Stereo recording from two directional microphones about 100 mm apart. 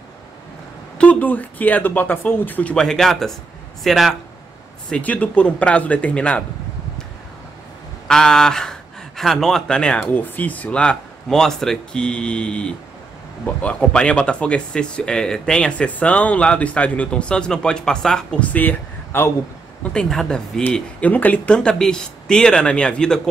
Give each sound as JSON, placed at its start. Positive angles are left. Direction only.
{"t": 0.9, "sound": "a man's voice", "side_deg": 15}
{"t": 4.8, "sound": "speech", "side_deg": 15}
{"t": 8.1, "sound": "speech", "side_deg": 5}